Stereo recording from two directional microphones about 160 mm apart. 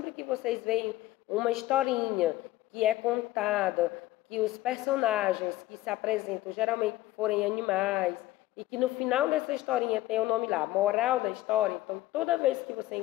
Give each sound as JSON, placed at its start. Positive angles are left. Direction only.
{"t": 0.1, "sound": "a woman's voice", "side_deg": -5}